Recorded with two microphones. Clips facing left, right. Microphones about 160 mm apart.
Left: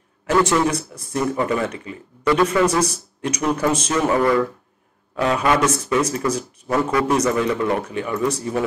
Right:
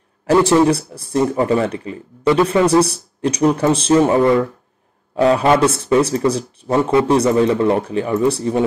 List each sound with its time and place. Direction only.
0.3 s speech: 30° right (ahead or behind)